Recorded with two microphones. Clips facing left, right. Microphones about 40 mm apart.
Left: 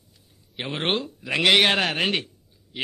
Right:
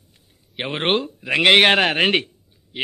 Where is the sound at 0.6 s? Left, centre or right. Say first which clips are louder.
Right 5 dB; right.